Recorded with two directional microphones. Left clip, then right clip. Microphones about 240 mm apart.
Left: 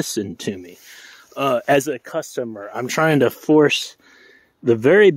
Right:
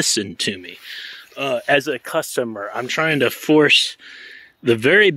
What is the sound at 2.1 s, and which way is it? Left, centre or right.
Speech, centre.